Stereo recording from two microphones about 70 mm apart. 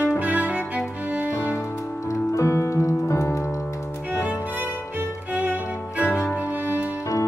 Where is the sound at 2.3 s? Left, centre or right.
Left.